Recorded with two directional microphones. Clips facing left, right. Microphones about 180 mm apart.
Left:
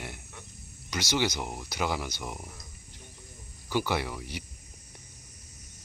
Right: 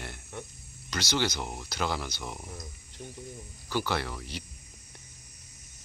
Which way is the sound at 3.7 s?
15° left (ahead or behind).